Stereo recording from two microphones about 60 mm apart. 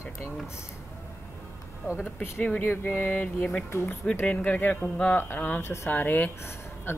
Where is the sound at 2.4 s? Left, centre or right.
Left.